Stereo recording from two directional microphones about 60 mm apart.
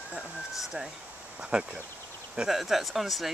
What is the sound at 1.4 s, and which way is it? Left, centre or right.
Speech, centre.